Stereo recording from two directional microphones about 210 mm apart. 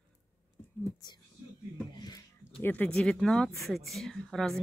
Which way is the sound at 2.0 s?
20° left (ahead or behind).